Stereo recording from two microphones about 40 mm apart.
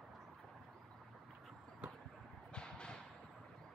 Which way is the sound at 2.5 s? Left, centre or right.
Left.